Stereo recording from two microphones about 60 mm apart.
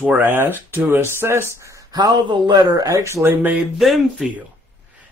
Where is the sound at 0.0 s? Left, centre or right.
Right.